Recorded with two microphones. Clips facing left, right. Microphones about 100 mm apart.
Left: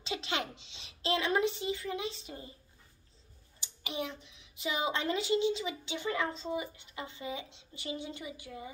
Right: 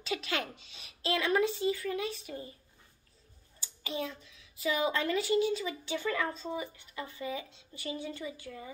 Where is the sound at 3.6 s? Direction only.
20° left (ahead or behind).